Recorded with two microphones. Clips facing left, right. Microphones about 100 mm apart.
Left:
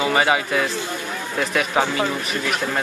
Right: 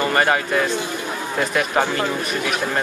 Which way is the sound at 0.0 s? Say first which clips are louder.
Even; 5° left (ahead or behind).